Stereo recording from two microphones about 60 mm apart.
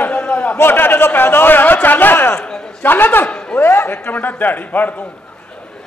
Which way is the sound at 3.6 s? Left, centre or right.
Left.